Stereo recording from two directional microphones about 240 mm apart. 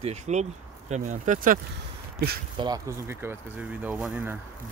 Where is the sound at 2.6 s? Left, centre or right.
Centre.